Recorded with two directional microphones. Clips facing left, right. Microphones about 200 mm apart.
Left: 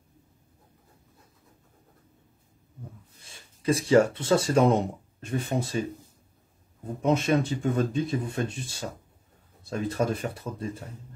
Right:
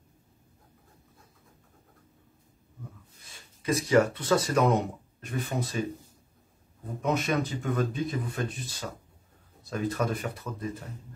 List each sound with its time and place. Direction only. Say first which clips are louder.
3.2 s speech: left 1 dB; 30° left (ahead or behind)
7.0 s speech: left 4 dB; 25° left (ahead or behind)